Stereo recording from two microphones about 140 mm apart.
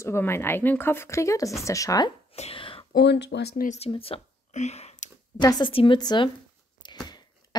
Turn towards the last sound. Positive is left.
turn(degrees=30)  # may be behind; listen again after turning